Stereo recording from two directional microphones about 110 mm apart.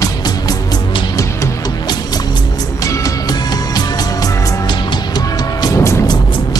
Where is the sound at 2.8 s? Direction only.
35° left (ahead or behind).